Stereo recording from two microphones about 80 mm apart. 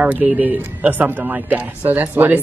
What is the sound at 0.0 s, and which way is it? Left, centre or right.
Speech, centre.